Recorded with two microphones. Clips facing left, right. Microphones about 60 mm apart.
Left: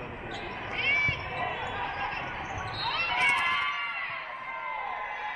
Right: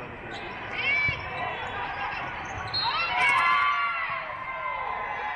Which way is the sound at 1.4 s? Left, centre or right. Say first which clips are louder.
Even; centre.